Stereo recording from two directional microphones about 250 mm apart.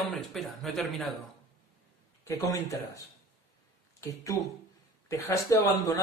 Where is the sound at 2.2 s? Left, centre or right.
Centre.